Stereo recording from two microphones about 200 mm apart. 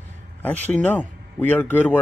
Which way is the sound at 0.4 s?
10° left (ahead or behind).